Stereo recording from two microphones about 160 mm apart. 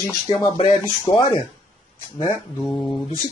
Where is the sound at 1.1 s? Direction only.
30° left (ahead or behind).